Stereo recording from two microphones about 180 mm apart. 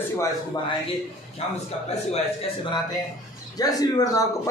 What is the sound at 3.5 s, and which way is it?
Speech, 20° left (ahead or behind).